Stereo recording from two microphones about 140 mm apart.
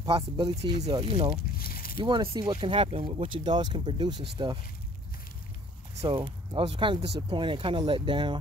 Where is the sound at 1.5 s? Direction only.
90° left.